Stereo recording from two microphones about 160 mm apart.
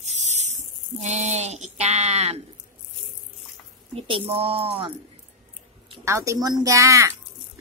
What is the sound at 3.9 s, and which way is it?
Speech, 35° right (ahead or behind).